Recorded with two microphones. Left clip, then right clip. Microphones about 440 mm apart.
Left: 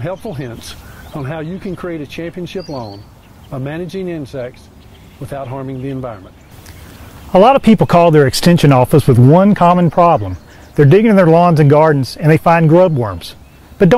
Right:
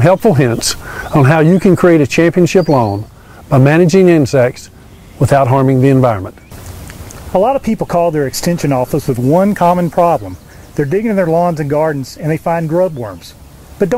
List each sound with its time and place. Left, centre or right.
0.0 s speech: right
7.3 s speech: left
10.8 s speech: left